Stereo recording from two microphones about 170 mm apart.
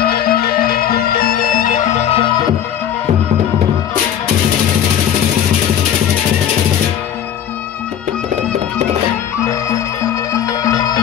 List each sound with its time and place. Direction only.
0.0 s music: 65° left (ahead or behind)
10.3 s music: 20° left (ahead or behind)